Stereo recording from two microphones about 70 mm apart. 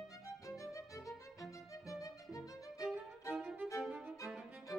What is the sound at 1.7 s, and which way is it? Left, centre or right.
Violin, left.